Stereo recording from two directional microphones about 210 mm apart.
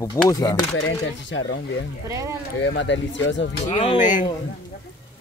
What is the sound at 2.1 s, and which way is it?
Speech, 15° right (ahead or behind).